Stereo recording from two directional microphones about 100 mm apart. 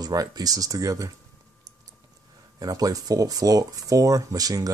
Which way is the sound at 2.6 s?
35° right (ahead or behind).